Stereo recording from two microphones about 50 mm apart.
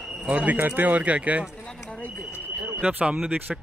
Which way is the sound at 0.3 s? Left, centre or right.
Right.